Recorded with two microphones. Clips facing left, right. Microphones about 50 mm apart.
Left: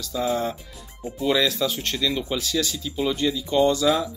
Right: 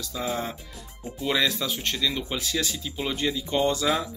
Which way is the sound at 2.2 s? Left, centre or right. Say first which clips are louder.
Left 3 dB; right.